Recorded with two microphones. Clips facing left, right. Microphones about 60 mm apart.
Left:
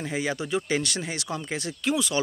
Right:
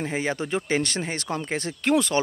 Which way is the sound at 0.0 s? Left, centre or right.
Right.